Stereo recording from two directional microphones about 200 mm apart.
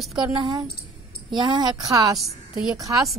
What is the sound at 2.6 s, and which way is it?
Speech, centre (ahead or behind).